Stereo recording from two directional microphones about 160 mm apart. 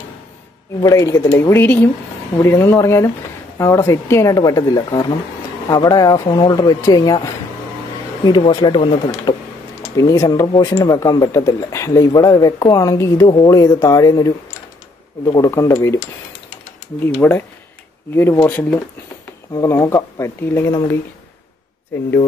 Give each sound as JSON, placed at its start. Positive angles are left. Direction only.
{"t": 0.7, "sound": "speech", "side_deg": 20}
{"t": 8.5, "sound": "speech", "side_deg": 25}
{"t": 17.2, "sound": "speech", "side_deg": 10}
{"t": 19.5, "sound": "speech", "side_deg": 20}